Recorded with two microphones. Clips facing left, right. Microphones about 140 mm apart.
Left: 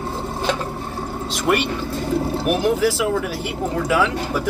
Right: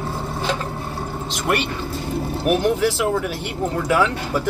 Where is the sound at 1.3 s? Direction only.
Centre (ahead or behind).